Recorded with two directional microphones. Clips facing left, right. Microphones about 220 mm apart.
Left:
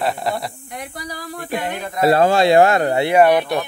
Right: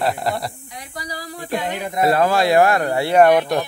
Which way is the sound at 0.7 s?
55° left (ahead or behind).